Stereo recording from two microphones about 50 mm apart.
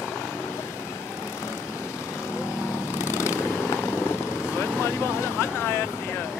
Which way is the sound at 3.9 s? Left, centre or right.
Left.